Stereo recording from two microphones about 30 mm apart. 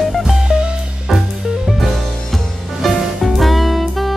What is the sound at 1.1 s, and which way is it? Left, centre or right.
Music, centre.